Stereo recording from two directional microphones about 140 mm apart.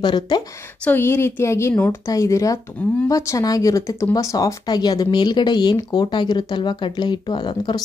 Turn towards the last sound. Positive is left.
turn(degrees=30)  # may be behind; listen again after turning